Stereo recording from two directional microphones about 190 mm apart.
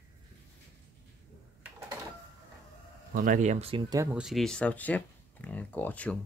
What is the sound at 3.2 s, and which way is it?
Speech, 40° right (ahead or behind).